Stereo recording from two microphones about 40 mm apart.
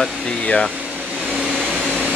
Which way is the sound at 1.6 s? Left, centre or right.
Right.